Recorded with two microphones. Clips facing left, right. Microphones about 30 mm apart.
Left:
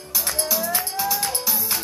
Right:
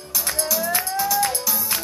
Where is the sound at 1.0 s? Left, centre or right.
Centre.